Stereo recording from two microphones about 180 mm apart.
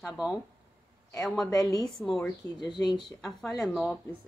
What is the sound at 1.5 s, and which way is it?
Speech, 20° left (ahead or behind).